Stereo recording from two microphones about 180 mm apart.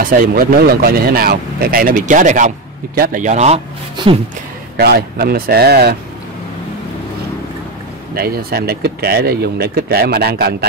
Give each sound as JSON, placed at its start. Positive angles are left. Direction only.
{"t": 0.0, "sound": "speech", "side_deg": -55}
{"t": 4.7, "sound": "speech", "side_deg": -60}
{"t": 8.1, "sound": "speech", "side_deg": -55}